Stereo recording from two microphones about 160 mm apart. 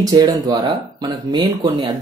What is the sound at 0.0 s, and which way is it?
Speech, 25° right (ahead or behind).